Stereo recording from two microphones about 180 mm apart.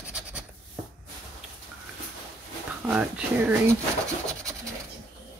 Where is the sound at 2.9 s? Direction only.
5° right (ahead or behind).